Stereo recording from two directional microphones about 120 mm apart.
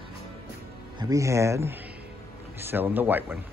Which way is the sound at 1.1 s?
25° right (ahead or behind).